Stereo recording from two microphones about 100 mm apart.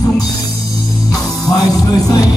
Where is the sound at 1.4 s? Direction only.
40° left (ahead or behind).